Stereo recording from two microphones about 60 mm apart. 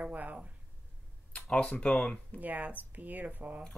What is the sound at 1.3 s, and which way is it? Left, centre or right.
Speech, centre.